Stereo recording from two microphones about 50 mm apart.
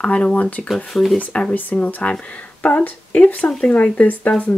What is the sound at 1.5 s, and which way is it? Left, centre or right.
Speech, left.